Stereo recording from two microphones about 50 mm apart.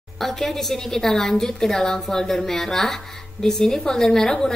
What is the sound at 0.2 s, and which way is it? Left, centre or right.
A woman's voice, centre.